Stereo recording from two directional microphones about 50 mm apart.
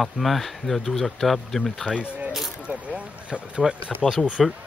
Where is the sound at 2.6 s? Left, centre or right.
Right.